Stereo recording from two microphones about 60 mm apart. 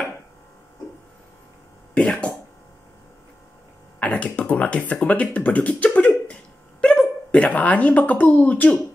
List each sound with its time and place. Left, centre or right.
2.0 s speech: centre
4.0 s speech: left